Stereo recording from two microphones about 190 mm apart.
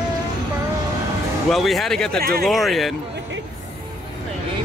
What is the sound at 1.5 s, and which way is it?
Speech, centre (ahead or behind).